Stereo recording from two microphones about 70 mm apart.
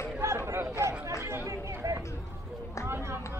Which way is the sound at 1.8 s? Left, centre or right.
Right.